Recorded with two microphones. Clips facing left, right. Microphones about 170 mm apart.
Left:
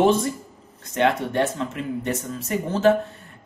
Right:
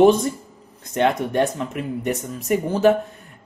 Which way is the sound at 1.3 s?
15° right (ahead or behind).